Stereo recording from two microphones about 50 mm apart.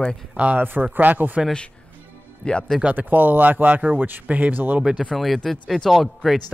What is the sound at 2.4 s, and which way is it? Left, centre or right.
Speech, centre.